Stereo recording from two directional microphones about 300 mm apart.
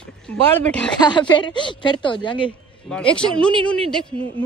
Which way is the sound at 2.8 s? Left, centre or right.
Centre.